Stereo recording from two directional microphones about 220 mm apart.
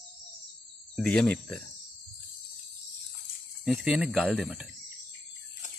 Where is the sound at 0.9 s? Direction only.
5° left (ahead or behind).